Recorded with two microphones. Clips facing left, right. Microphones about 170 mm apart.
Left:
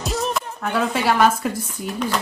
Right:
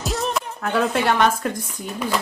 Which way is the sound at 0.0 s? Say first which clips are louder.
Even; centre (ahead or behind).